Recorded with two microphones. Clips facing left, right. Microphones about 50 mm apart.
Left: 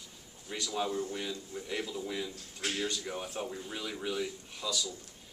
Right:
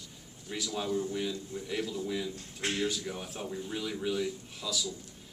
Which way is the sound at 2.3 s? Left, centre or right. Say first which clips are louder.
Right 2 dB; right.